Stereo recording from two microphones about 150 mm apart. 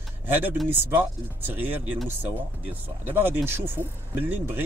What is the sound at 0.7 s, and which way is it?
Speech, 15° right (ahead or behind).